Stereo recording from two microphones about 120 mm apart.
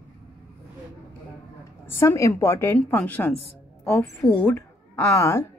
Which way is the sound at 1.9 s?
20° left (ahead or behind).